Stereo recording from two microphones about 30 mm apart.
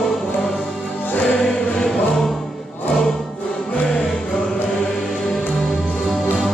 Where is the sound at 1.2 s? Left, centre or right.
Left.